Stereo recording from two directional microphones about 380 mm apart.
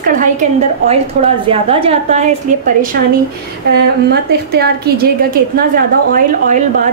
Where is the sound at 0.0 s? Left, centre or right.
Centre.